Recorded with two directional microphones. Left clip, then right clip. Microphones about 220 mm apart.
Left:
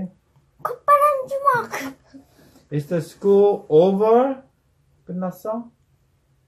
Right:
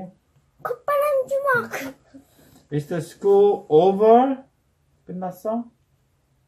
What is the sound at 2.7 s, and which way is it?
Speech, 35° right (ahead or behind).